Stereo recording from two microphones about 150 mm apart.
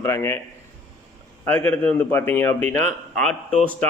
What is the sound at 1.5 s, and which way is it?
A man's voice, 15° left (ahead or behind).